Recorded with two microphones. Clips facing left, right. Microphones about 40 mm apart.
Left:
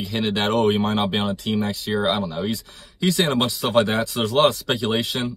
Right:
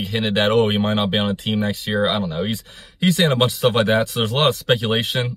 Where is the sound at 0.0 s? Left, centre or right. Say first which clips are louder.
Right 3 dB; right.